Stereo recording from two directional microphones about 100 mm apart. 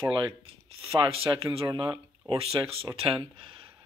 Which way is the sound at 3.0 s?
60° right (ahead or behind).